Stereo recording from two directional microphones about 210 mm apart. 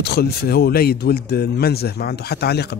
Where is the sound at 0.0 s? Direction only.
50° left (ahead or behind).